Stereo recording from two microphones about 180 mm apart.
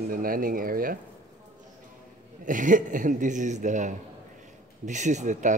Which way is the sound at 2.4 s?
45° right (ahead or behind).